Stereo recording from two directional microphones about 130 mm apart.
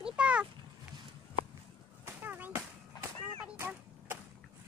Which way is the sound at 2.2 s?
15° right (ahead or behind).